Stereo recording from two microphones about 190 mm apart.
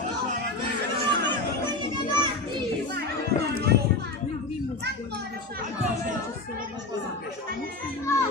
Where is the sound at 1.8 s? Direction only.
25° right (ahead or behind).